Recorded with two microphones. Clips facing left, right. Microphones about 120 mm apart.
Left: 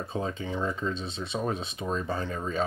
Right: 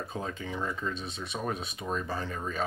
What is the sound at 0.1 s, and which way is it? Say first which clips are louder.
Speech: left 4 dB; 25° left (ahead or behind).